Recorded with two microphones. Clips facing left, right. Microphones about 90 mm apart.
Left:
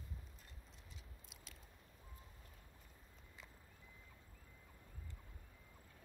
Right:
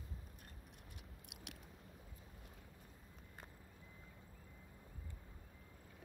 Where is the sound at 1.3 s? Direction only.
70° right (ahead or behind).